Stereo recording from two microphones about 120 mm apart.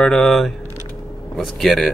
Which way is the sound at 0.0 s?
Centre (ahead or behind).